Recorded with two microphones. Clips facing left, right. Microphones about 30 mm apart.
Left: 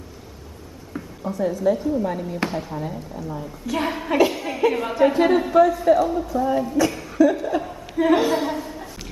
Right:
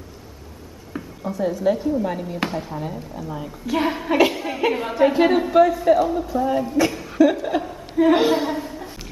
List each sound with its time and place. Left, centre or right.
0.9 s a woman's voice: centre
6.5 s speech: right
6.9 s chuckle: centre
7.6 s chuckle: centre
8.1 s a woman's voice: right
8.5 s a sound: centre